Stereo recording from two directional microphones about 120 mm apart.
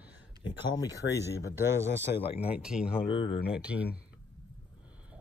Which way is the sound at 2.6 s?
10° right (ahead or behind).